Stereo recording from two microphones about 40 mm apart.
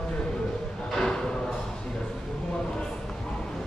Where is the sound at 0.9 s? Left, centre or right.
Centre.